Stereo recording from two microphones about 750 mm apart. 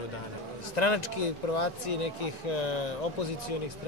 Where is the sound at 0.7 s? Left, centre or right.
Left.